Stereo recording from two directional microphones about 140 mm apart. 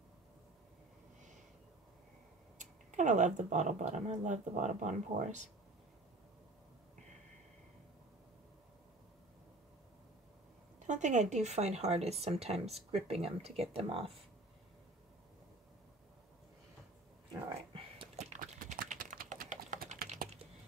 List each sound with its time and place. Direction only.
2.6 s speech: 60° right (ahead or behind)
10.9 s speech: 60° right (ahead or behind); by 14.1 s 45° right (ahead or behind)
17.7 s a sound: 40° right (ahead or behind)
18.1 s clip-clop: 50° right (ahead or behind)
18.4 s typing: 70° right (ahead or behind)